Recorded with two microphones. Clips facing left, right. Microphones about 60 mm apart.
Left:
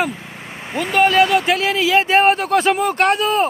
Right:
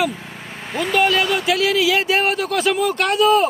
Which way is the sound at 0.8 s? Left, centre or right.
Left.